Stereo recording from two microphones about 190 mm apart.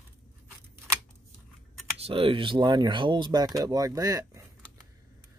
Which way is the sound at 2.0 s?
30° right (ahead or behind).